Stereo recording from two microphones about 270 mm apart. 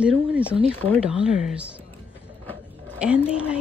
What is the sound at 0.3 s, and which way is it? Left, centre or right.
Speech, centre.